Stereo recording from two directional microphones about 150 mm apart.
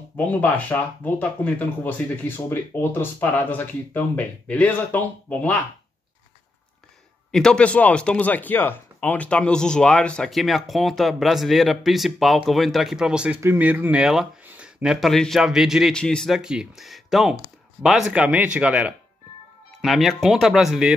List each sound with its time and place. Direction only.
0.2 s speech: 10° left (ahead or behind)
7.2 s speech: 5° left (ahead or behind)